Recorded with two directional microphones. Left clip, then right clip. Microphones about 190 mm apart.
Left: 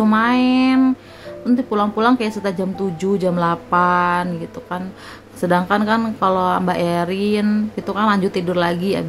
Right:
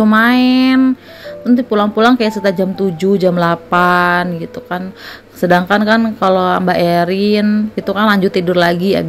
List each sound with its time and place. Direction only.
0.0 s a woman's voice: 20° right (ahead or behind)